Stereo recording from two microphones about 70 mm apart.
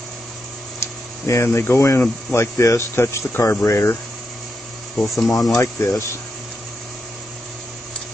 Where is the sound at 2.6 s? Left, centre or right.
Left.